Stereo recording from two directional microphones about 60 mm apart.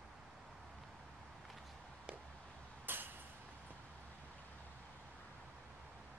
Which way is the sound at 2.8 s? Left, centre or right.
Right.